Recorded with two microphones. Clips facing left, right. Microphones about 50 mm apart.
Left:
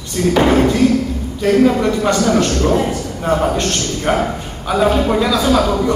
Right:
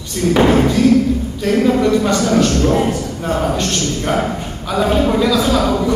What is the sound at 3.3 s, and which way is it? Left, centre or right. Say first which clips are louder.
Speech: left 2 dB; left.